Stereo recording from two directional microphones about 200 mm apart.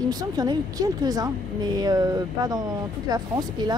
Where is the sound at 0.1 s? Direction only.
20° right (ahead or behind).